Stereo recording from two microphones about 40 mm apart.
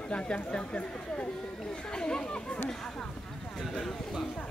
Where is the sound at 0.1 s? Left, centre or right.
Left.